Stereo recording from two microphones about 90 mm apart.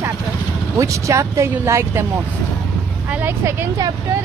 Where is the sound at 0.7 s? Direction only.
35° right (ahead or behind).